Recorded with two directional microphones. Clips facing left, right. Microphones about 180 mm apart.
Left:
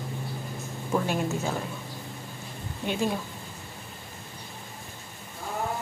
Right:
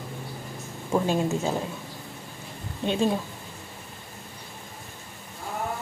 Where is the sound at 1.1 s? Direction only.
25° right (ahead or behind).